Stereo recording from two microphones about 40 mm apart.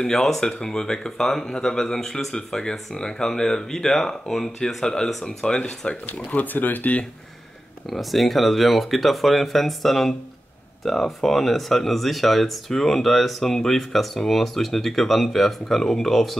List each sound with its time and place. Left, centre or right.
0.0 s speech: centre
6.3 s speech: left
7.9 s speech: centre